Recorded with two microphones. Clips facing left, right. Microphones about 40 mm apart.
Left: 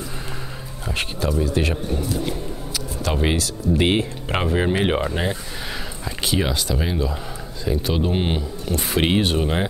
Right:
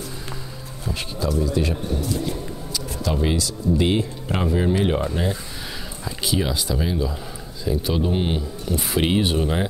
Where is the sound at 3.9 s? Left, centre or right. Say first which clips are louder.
Left 2 dB; left.